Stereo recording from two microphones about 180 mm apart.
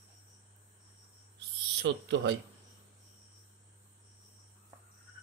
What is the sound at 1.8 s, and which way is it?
Speech, 75° right (ahead or behind).